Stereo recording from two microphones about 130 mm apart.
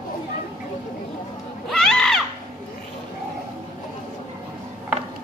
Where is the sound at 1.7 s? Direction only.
5° left (ahead or behind).